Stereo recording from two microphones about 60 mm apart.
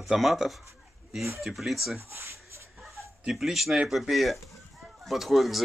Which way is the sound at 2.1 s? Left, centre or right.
Right.